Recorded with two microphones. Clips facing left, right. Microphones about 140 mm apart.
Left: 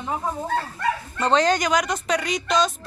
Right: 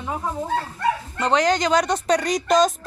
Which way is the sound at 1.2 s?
15° right (ahead or behind).